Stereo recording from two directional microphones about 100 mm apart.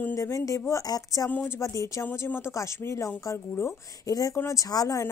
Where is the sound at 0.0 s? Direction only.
30° left (ahead or behind).